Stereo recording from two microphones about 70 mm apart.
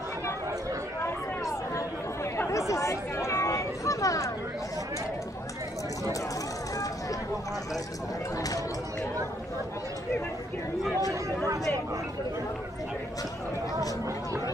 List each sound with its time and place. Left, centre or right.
2.3 s chatter: left
8.4 s speech: left